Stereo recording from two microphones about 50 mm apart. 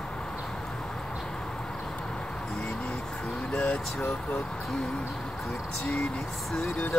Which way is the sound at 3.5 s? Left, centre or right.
Left.